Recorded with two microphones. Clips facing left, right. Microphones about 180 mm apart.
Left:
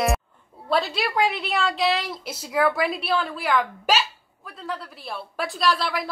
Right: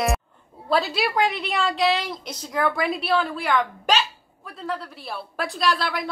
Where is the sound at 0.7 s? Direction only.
Centre (ahead or behind).